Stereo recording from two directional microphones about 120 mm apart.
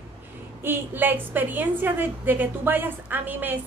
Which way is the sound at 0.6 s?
20° right (ahead or behind).